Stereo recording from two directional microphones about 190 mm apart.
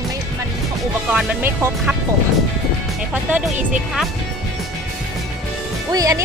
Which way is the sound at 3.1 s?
10° right (ahead or behind).